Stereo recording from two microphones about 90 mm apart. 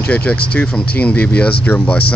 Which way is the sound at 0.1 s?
15° left (ahead or behind).